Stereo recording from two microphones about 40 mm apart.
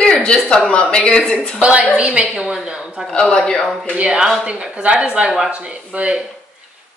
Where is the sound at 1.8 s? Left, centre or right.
Right.